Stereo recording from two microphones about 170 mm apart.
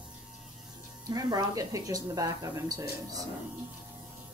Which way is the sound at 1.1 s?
20° right (ahead or behind).